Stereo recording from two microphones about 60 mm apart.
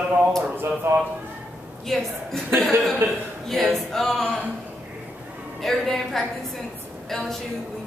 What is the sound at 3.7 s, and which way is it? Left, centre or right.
Music, centre.